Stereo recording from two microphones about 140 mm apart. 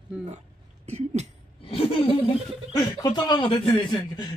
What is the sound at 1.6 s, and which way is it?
Chuckle, 40° left (ahead or behind).